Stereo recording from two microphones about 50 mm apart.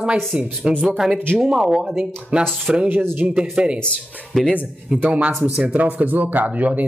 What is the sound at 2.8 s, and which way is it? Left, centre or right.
Speech, right.